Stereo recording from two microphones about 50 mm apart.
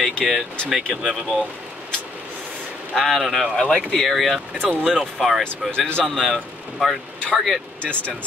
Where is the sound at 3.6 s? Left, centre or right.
Left.